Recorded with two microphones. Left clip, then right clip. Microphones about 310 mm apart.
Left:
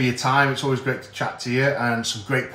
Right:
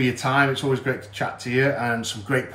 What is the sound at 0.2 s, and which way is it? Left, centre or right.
Speech, centre.